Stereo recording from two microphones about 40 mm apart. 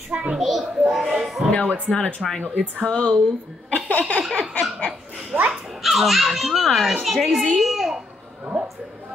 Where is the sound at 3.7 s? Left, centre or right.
Left.